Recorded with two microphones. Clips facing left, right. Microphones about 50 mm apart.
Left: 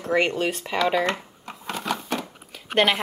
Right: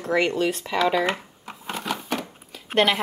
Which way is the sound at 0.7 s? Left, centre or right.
Centre.